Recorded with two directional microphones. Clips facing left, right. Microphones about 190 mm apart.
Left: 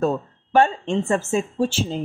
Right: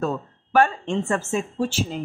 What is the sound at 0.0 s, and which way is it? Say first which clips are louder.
Speech: left 4 dB; 30° left (ahead or behind).